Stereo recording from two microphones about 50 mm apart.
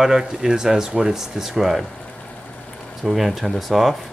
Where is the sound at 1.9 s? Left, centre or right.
Left.